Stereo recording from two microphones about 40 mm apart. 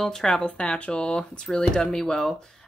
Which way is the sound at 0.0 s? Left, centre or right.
Centre.